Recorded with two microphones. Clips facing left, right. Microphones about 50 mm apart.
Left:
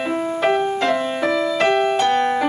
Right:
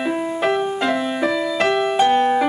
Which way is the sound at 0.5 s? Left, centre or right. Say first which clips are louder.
Left 1 dB; centre.